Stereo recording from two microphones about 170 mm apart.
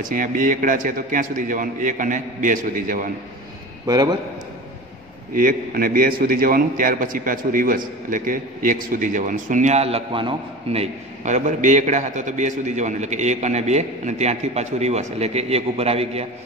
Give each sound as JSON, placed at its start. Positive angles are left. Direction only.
{"t": 0.0, "sound": "a man's voice", "side_deg": -50}
{"t": 3.8, "sound": "a man's voice", "side_deg": -25}
{"t": 5.3, "sound": "a man's voice", "side_deg": -55}